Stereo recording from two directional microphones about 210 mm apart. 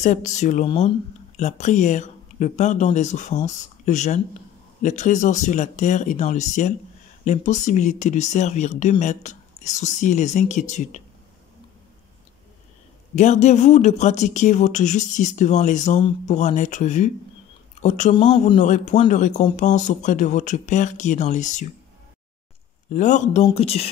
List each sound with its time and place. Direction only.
0.0 s speech: 35° left (ahead or behind)
13.1 s speech: 35° left (ahead or behind)
22.8 s speech: 35° left (ahead or behind)